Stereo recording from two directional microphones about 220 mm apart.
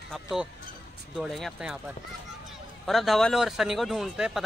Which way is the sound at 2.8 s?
Centre (ahead or behind).